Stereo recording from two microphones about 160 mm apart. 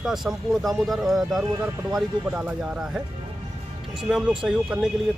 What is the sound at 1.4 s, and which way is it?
Speech, 20° right (ahead or behind).